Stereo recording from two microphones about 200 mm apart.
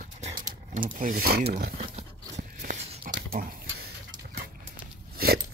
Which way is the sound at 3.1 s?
45° right (ahead or behind).